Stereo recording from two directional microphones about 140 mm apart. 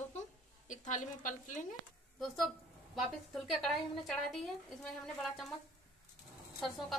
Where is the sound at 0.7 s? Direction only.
65° left (ahead or behind).